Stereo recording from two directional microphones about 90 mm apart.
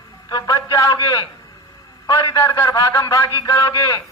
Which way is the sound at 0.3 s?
40° left (ahead or behind).